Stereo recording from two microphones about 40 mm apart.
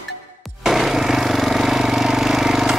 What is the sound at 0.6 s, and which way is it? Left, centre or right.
Vehicle, centre.